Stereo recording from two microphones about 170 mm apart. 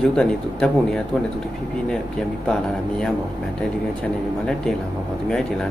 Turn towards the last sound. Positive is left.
turn(degrees=5)  # may be behind; listen again after turning